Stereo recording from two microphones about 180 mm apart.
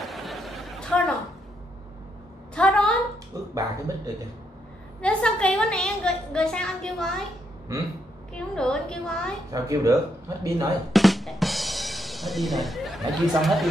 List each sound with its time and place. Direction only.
0.0 s a sound: centre (ahead or behind)
2.5 s a sound: 5° left (ahead or behind)
3.5 s speech: 20° right (ahead or behind)
5.0 s a woman's voice: 5° left (ahead or behind)
7.7 s speech: 15° right (ahead or behind)
8.4 s a woman's voice: 5° left (ahead or behind)
9.5 s speech: 20° right (ahead or behind)
10.9 s drum: centre (ahead or behind)
13.4 s a woman's voice: centre (ahead or behind)